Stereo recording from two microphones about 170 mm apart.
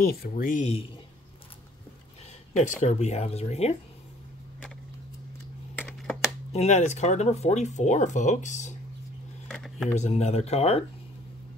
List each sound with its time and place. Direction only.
0.0 s speech: 65° left (ahead or behind); by 0.8 s 40° left (ahead or behind)
2.5 s speech: 45° left (ahead or behind)
5.8 s computer keyboard: 10° left (ahead or behind)
6.5 s speech: 40° left (ahead or behind)
9.5 s a sound: centre (ahead or behind)
9.9 s speech: 40° left (ahead or behind)